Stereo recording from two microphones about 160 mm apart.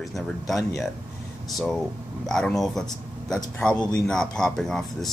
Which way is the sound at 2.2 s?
5° left (ahead or behind).